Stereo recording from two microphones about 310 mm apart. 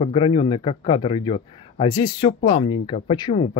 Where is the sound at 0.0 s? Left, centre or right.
Centre.